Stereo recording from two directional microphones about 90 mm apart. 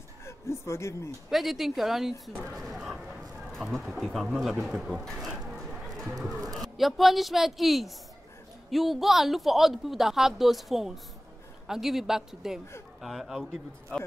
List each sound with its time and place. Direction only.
0.2 s speech: 30° left (ahead or behind)
1.3 s speech: centre (ahead or behind)
2.5 s a sound: centre (ahead or behind)
3.7 s speech: centre (ahead or behind)
6.8 s speech: centre (ahead or behind)
13.4 s a man's voice: 10° left (ahead or behind)